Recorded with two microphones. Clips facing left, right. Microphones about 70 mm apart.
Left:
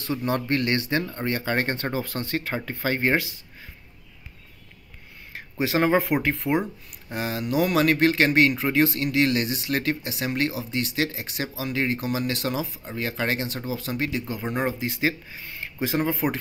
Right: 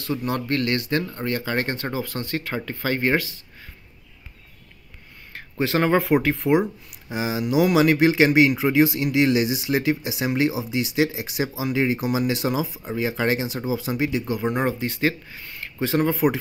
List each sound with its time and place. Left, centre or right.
0.0 s speech: left
5.3 s a sound: centre
5.9 s speech: centre
14.7 s speech: centre
15.0 s speech: centre
15.9 s speech: centre